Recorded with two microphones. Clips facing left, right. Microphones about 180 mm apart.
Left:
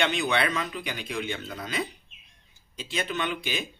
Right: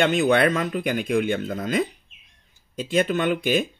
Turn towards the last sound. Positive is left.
turn(degrees=-50)  # may be behind; listen again after turning